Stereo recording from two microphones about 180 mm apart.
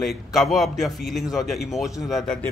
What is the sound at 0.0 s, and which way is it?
Speech, centre (ahead or behind).